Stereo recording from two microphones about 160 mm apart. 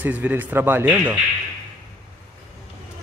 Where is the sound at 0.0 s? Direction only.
10° right (ahead or behind).